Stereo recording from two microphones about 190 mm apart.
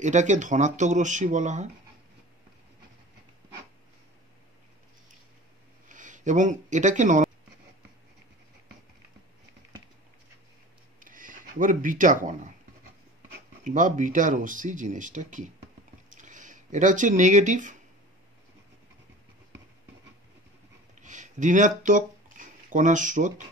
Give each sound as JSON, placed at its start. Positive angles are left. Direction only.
{"t": 0.0, "sound": "speech", "side_deg": -40}
{"t": 5.9, "sound": "speech", "side_deg": -40}
{"t": 11.0, "sound": "speech", "side_deg": -45}
{"t": 13.7, "sound": "speech", "side_deg": -40}
{"t": 20.9, "sound": "a sound", "side_deg": -40}